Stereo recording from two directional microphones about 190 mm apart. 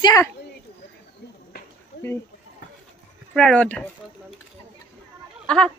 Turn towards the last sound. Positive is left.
turn(degrees=5)  # may be behind; listen again after turning